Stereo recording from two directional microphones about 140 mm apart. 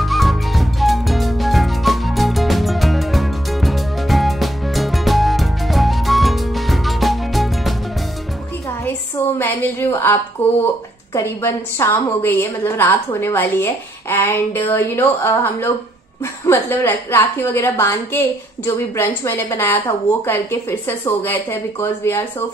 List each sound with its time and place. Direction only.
0.0 s music: centre (ahead or behind)
9.4 s a sound: 15° left (ahead or behind)
11.1 s a woman's voice: 20° left (ahead or behind)